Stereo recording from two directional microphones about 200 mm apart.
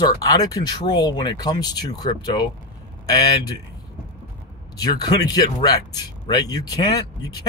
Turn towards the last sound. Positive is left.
turn(degrees=20)  # may be behind; listen again after turning